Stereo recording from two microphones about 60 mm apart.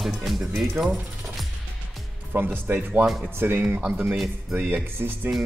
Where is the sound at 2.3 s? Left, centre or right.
Right.